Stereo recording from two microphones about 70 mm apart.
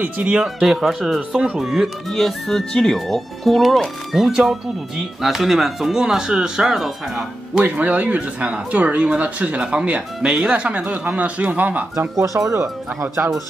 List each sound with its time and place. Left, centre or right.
0.0 s speech: centre
0.6 s speech: centre
1.3 s speech: centre
1.6 s speech: centre
7.6 s speech: right
12.2 s speech: right